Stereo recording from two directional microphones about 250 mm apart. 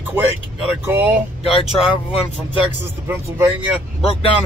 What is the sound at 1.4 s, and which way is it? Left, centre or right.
Speech, left.